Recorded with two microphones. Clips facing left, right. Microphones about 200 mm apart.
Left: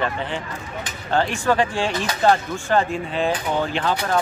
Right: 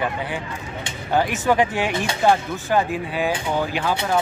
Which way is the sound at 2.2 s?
10° right (ahead or behind).